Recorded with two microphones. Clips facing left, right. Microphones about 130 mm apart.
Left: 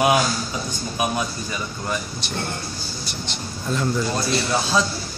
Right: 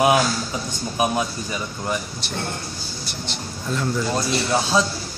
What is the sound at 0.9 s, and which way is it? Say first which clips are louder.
A man's voice: right 3 dB; 20° right (ahead or behind).